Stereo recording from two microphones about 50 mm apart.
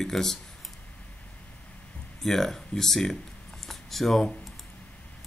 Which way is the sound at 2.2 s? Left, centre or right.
Centre.